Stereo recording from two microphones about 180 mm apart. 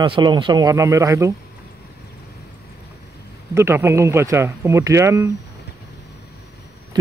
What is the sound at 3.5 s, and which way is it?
Speech, 15° right (ahead or behind).